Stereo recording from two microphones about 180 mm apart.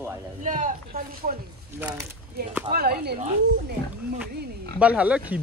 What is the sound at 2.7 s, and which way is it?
Speech, 60° right (ahead or behind).